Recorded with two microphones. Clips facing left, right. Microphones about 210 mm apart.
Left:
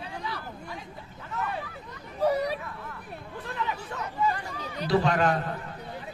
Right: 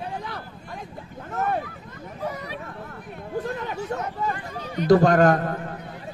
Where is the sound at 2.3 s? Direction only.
35° left (ahead or behind).